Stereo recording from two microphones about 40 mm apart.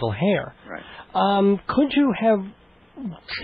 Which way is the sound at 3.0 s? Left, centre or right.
Right.